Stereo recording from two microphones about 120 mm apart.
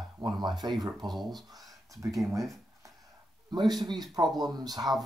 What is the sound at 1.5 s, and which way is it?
Speech, 30° right (ahead or behind).